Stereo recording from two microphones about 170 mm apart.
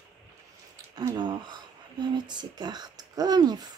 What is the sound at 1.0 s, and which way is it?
Speech, 25° right (ahead or behind).